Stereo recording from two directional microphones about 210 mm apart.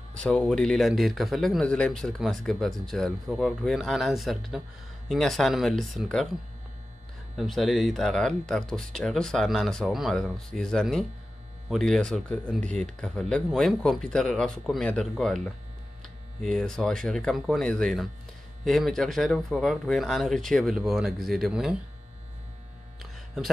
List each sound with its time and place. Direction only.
0.2 s speech: 5° left (ahead or behind)
7.3 s speech: centre (ahead or behind)